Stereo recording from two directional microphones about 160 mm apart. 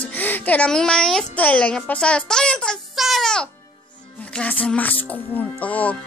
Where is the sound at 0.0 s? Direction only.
10° left (ahead or behind).